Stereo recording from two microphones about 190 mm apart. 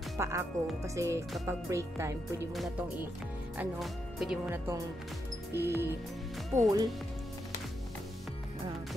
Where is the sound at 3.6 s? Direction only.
Centre (ahead or behind).